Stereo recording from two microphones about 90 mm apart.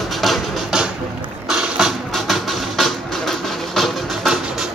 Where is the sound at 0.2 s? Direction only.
5° right (ahead or behind).